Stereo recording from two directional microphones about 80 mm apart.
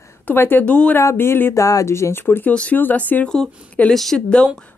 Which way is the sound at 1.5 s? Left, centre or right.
Left.